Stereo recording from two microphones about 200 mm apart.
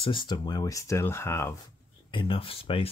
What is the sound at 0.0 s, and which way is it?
Speech, 25° left (ahead or behind).